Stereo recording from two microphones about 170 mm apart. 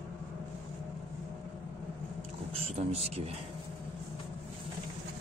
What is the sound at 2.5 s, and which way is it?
Speech, 40° right (ahead or behind).